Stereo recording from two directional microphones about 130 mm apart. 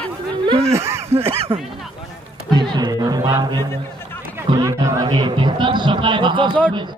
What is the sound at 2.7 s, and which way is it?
Music, 30° right (ahead or behind).